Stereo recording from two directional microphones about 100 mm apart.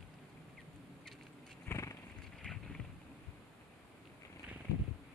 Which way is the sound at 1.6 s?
30° left (ahead or behind).